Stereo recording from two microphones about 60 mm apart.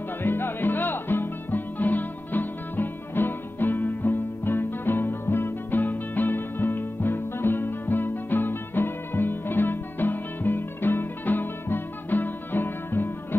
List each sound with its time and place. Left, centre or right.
0.2 s music: left